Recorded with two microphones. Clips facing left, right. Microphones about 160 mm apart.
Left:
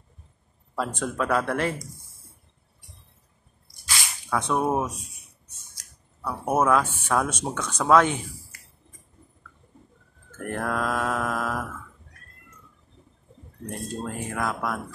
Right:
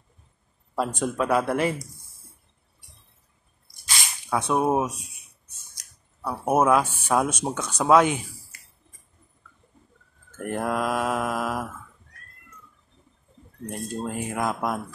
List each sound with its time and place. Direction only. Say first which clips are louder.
0.7 s mantra: right 2 dB; 15° right (ahead or behind)
3.8 s a sound: even; 10° right (ahead or behind)
5.8 s speech: right 1 dB; 10° right (ahead or behind)
10.4 s mantra: right 2 dB; 15° right (ahead or behind)
13.7 s mantra: right 2 dB; 15° right (ahead or behind)